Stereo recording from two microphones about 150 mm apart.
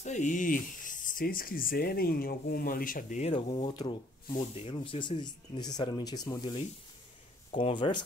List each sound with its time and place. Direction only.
0.0 s speech: 55° left (ahead or behind)
3.2 s speech: 40° left (ahead or behind); by 6.5 s 25° left (ahead or behind)
7.5 s speech: 35° left (ahead or behind)